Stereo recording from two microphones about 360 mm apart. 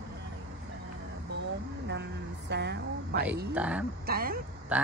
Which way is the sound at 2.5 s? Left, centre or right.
Right.